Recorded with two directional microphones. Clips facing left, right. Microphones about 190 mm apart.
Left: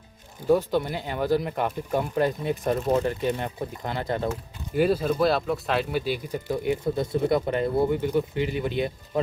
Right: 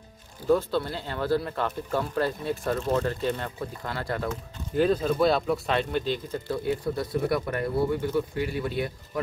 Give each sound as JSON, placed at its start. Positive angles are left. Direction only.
{"t": 0.5, "sound": "speech", "side_deg": 15}
{"t": 4.3, "sound": "speech", "side_deg": 10}